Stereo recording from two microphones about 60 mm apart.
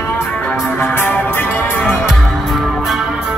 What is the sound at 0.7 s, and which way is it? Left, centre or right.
Music, left.